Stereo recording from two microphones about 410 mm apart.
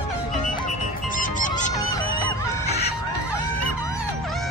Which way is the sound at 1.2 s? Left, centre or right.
Centre.